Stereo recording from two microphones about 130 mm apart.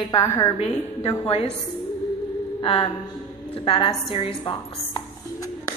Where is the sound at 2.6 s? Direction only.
45° left (ahead or behind).